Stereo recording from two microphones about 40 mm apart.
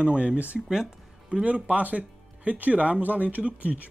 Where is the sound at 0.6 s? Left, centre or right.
Centre.